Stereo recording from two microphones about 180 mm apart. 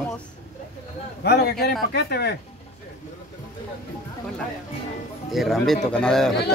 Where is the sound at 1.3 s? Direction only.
65° left (ahead or behind).